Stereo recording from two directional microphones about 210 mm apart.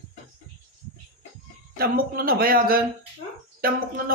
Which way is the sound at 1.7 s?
45° right (ahead or behind).